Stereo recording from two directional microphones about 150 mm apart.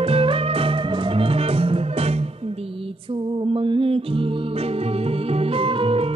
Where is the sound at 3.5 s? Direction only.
35° right (ahead or behind).